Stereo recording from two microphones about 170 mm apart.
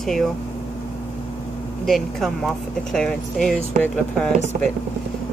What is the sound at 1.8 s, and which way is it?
Speech, centre (ahead or behind).